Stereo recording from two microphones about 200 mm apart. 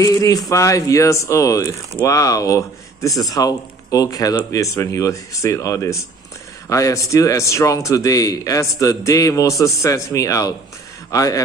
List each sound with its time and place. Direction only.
0.0 s speech: 15° left (ahead or behind)